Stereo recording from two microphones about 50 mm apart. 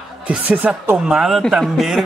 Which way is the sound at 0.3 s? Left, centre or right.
Right.